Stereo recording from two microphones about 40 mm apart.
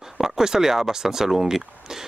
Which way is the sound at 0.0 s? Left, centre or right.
Centre.